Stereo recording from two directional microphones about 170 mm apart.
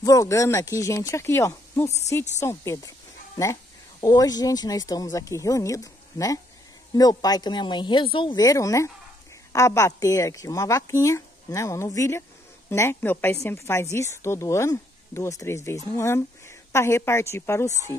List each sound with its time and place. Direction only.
0.0 s speech: 20° left (ahead or behind)
4.0 s a woman's voice: 20° left (ahead or behind)